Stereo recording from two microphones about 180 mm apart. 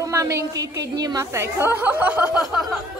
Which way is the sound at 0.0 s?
15° right (ahead or behind).